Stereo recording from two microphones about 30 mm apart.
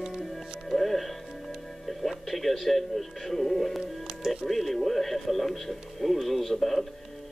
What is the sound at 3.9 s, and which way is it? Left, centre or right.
Music, centre.